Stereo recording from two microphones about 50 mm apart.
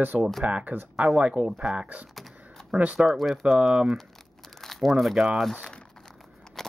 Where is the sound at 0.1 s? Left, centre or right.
Right.